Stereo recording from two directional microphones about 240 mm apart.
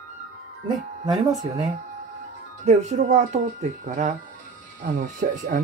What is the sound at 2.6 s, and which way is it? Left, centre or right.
Speech, right.